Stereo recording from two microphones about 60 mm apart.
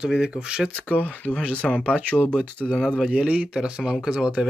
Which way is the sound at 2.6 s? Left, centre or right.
Centre.